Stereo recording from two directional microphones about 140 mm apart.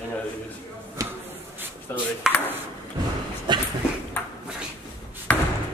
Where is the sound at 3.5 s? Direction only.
35° right (ahead or behind).